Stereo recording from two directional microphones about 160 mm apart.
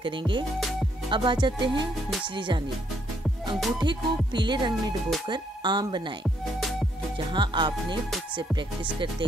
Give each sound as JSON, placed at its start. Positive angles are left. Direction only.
{"t": 0.0, "sound": "speech", "side_deg": -30}
{"t": 1.1, "sound": "music", "side_deg": -30}
{"t": 2.2, "sound": "speech", "side_deg": -30}
{"t": 3.8, "sound": "speech", "side_deg": -30}
{"t": 7.3, "sound": "speech", "side_deg": -30}
{"t": 8.4, "sound": "music", "side_deg": -30}